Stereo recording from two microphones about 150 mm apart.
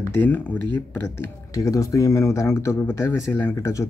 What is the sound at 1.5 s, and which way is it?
Speech, 25° left (ahead or behind).